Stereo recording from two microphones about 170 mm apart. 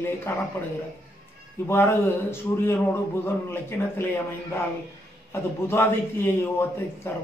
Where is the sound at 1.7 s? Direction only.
15° left (ahead or behind).